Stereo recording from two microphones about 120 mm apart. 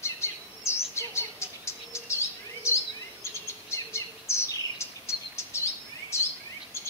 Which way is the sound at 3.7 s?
20° left (ahead or behind).